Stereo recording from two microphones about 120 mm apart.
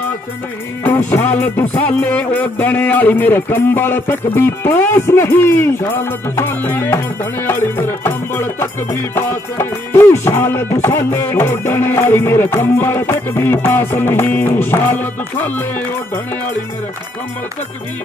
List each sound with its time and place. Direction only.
0.8 s music: 15° left (ahead or behind)